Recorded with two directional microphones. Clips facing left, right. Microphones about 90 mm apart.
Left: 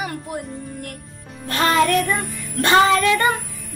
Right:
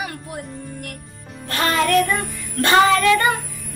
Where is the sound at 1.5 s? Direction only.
20° left (ahead or behind).